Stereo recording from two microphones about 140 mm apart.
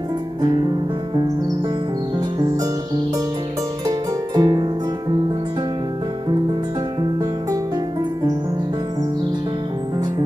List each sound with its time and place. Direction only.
4.4 s music: 35° right (ahead or behind)